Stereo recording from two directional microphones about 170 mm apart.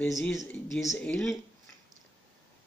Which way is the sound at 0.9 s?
5° left (ahead or behind).